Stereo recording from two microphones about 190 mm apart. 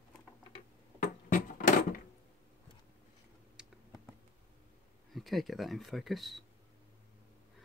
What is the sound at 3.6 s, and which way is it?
Computer keyboard, 5° right (ahead or behind).